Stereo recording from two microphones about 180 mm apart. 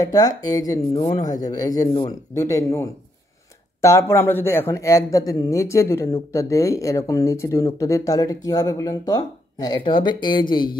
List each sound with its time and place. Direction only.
0.0 s speech: 20° left (ahead or behind)